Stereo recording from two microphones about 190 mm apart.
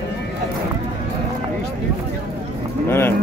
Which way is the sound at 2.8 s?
10° left (ahead or behind).